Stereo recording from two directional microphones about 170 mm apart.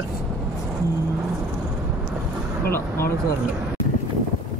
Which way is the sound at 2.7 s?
15° left (ahead or behind).